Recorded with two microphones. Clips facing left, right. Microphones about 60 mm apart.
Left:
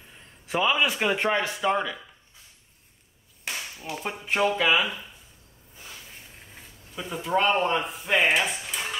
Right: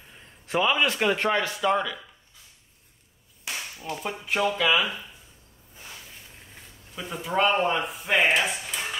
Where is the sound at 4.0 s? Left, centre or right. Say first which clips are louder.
Left 1 dB; left.